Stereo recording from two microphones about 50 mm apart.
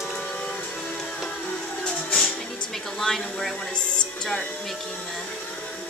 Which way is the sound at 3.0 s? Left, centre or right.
Centre.